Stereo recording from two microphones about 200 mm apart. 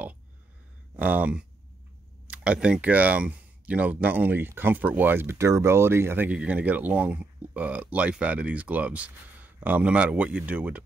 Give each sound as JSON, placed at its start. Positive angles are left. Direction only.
{"t": 0.9, "sound": "speech", "side_deg": -5}